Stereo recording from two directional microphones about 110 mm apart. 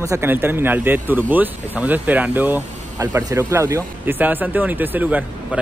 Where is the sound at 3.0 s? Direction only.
30° right (ahead or behind).